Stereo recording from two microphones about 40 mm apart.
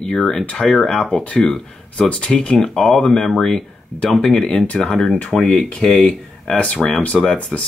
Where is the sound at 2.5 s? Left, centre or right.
Centre.